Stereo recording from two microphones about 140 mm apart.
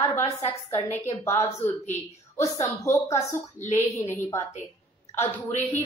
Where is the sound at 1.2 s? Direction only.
20° left (ahead or behind).